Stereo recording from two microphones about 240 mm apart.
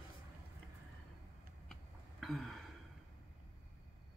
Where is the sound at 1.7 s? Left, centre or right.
Centre.